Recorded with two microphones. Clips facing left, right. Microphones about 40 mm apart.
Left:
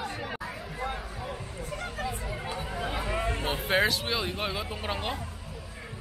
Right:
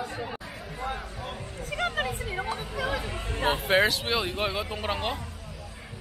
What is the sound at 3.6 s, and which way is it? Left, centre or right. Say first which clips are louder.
Speech: right 1 dB; centre.